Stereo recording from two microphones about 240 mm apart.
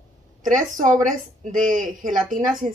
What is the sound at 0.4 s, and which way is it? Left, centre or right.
A woman's voice, right.